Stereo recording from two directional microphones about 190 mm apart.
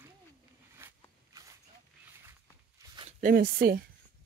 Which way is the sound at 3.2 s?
45° right (ahead or behind).